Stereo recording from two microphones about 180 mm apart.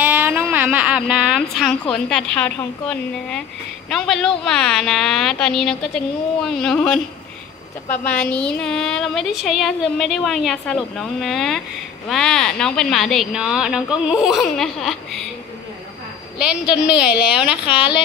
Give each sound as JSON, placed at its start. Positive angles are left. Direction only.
{"t": 0.0, "sound": "a woman's voice", "side_deg": -10}
{"t": 16.8, "sound": "a woman's voice", "side_deg": -5}
{"t": 17.6, "sound": "speech", "side_deg": 25}